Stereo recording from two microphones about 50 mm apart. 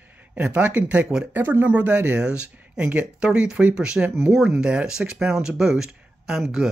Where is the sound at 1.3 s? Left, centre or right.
Right.